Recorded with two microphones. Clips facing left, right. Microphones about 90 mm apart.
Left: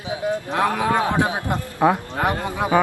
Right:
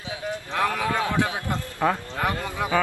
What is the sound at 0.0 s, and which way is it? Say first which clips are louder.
A man's voice: left 7 dB; 20° left (ahead or behind).